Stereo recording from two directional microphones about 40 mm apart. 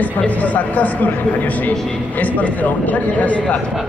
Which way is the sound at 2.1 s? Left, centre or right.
Left.